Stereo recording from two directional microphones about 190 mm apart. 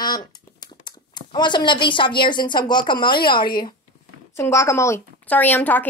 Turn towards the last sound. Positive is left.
turn(degrees=10)  # may be behind; listen again after turning